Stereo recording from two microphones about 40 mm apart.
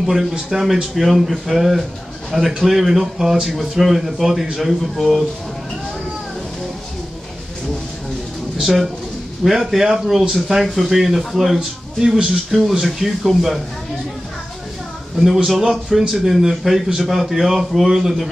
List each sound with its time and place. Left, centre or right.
0.0 s speech: centre
9.4 s speech: centre
15.1 s speech: centre